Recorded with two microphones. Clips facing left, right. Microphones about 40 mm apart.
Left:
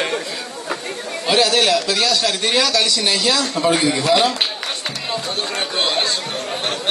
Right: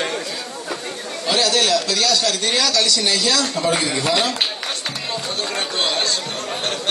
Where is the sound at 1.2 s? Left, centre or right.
Left; by 4.4 s centre.